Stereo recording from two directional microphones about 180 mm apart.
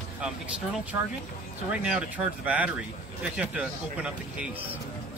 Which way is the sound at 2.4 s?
10° right (ahead or behind).